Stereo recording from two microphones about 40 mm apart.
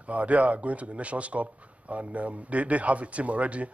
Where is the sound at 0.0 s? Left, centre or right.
Right.